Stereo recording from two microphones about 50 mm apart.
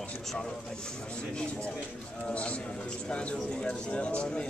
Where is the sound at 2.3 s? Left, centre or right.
Left.